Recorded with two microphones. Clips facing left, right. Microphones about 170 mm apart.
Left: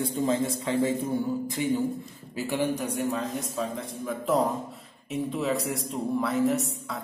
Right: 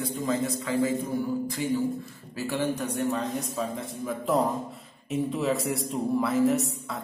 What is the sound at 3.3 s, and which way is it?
A man's voice, centre (ahead or behind).